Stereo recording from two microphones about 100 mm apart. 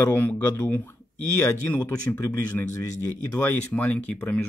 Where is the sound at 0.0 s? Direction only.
20° left (ahead or behind).